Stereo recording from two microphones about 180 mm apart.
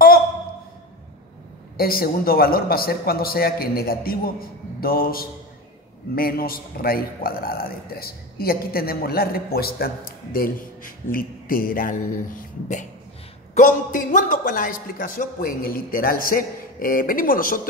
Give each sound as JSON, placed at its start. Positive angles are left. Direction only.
{"t": 1.8, "sound": "a man's voice", "side_deg": 55}
{"t": 13.6, "sound": "a man's voice", "side_deg": 45}